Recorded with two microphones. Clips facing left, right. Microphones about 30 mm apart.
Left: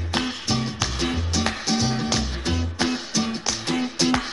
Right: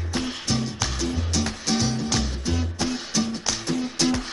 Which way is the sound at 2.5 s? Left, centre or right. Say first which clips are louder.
Left 3 dB; left.